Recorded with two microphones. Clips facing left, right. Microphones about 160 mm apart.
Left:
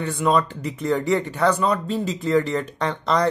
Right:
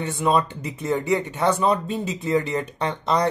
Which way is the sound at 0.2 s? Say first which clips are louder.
Left 1 dB; 25° right (ahead or behind).